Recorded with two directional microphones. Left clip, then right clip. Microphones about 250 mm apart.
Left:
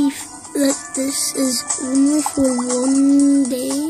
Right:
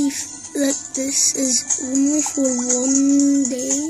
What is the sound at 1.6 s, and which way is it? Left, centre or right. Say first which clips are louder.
Music: left 2 dB; left.